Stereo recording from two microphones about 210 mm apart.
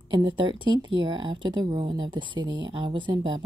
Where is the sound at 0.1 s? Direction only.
20° right (ahead or behind).